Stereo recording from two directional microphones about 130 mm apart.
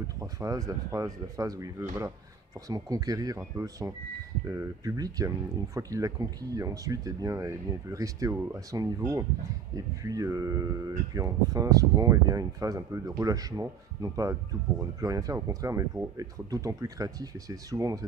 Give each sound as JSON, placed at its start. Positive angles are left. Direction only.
{"t": 0.2, "sound": "speech", "side_deg": -25}